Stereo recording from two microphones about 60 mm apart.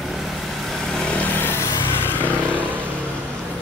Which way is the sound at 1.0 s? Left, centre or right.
Left.